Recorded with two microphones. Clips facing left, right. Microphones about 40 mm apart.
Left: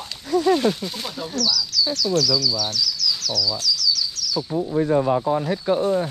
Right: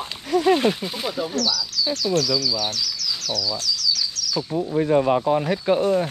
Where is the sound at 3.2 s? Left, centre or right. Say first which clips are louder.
Left 1 dB; right.